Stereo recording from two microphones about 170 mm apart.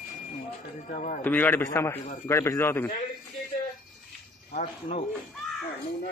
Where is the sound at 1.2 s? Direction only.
10° left (ahead or behind).